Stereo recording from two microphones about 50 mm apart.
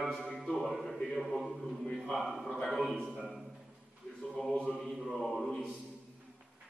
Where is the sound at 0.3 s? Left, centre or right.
Centre.